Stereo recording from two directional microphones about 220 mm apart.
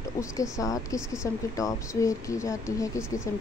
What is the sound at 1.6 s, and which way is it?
Speech, 15° left (ahead or behind).